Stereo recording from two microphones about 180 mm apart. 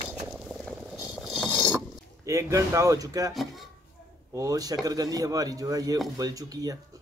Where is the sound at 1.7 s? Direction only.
15° right (ahead or behind).